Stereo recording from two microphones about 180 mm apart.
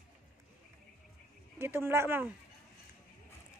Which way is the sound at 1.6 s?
15° right (ahead or behind).